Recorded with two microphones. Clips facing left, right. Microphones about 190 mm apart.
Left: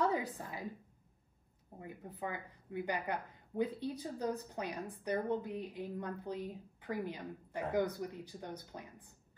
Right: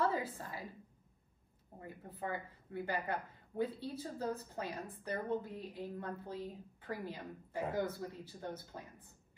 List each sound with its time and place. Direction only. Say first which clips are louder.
0.0 s a woman's voice: left 1 dB; 20° left (ahead or behind)
1.8 s a woman's voice: left 1 dB; 15° left (ahead or behind)